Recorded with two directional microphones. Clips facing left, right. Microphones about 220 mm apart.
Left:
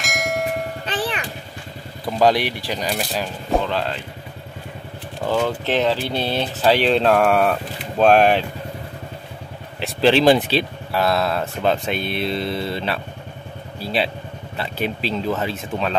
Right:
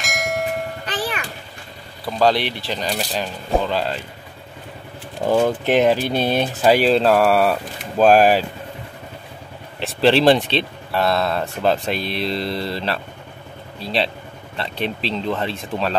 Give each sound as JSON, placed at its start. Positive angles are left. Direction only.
{"t": 0.0, "sound": "bell", "side_deg": 0}
{"t": 0.8, "sound": "music", "side_deg": 30}
{"t": 2.0, "sound": "speech", "side_deg": 15}
{"t": 5.2, "sound": "speech", "side_deg": -20}
{"t": 9.8, "sound": "speech", "side_deg": 0}